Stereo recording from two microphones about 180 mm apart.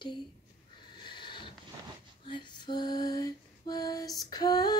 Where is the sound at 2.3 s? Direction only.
25° left (ahead or behind).